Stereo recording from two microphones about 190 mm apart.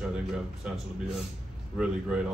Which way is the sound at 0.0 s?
5° right (ahead or behind).